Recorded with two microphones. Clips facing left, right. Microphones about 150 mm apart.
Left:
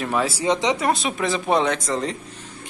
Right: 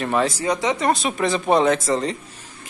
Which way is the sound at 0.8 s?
Centre (ahead or behind).